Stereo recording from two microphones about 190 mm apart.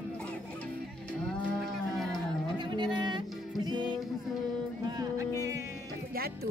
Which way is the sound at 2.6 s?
25° right (ahead or behind).